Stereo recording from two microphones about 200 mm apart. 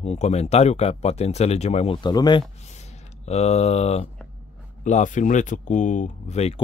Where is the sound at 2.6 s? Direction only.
35° left (ahead or behind).